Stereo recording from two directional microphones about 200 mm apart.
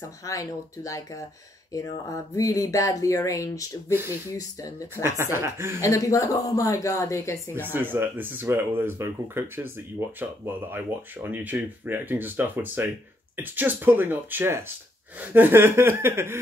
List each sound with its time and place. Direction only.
0.0 s speech: 15° left (ahead or behind)
3.9 s speech: 10° right (ahead or behind)
4.3 s speech: 15° left (ahead or behind)
5.0 s speech: 15° right (ahead or behind)
5.8 s speech: 15° left (ahead or behind)
7.5 s speech: 10° right (ahead or behind)